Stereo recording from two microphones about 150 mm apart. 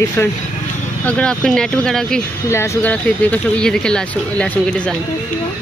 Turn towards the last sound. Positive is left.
turn(degrees=10)  # may be behind; listen again after turning